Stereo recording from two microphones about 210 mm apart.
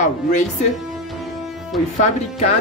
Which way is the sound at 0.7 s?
Centre (ahead or behind).